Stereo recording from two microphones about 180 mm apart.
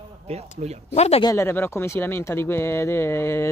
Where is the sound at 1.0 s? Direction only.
35° left (ahead or behind).